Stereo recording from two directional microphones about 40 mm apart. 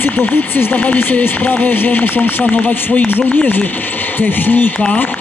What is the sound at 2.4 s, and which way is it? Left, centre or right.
Speech, left.